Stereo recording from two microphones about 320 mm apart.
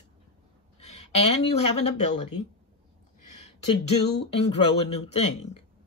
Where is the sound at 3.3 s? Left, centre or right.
Left.